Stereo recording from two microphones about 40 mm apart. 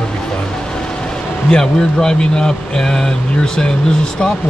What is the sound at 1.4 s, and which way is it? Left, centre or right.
Speech, centre.